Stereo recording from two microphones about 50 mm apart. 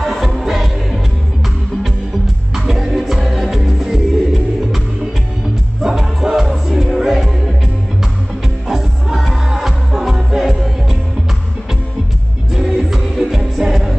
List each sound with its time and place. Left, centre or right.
0.0 s music: centre
2.5 s music: centre
8.6 s music: centre
12.5 s music: centre